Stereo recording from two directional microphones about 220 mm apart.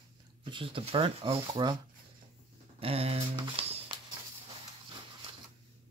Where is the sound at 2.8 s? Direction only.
25° right (ahead or behind).